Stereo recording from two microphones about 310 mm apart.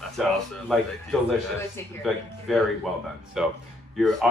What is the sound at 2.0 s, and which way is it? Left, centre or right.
Speech, centre.